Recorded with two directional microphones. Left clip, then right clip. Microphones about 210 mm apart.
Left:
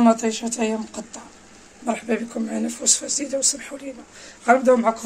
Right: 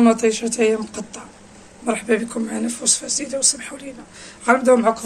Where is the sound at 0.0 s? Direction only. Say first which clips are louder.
Right 2 dB; 20° left (ahead or behind).